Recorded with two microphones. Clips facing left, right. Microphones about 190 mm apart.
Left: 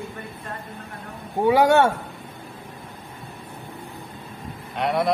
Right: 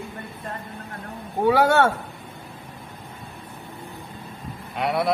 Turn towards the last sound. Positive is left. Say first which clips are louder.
# left 1 dB
turn(degrees=0)  # may be behind; listen again after turning